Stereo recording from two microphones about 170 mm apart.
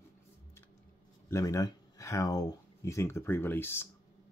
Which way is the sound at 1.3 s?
20° left (ahead or behind).